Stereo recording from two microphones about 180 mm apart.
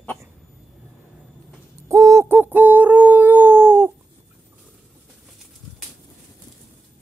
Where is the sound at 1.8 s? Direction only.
15° right (ahead or behind).